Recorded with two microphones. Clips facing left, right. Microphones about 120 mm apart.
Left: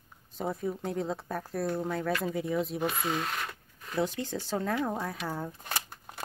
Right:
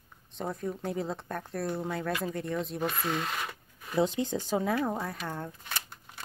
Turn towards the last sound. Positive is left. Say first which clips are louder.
# left 3 dB
turn(degrees=40)  # may be behind; listen again after turning